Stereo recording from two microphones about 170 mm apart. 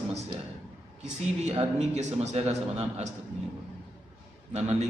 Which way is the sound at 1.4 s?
40° right (ahead or behind).